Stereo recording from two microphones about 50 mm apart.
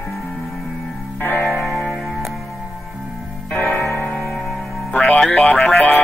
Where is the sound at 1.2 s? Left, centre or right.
Left.